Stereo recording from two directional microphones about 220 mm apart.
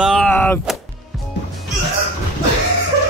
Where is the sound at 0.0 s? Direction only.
5° left (ahead or behind).